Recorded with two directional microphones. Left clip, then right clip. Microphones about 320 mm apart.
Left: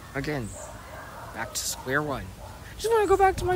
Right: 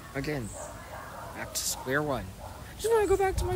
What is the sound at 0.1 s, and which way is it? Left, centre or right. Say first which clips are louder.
Speech: left 3 dB; centre.